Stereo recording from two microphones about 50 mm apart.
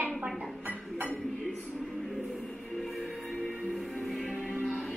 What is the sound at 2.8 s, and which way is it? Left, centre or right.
Music, centre.